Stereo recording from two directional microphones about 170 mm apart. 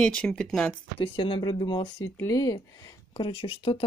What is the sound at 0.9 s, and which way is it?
Speech, 30° left (ahead or behind).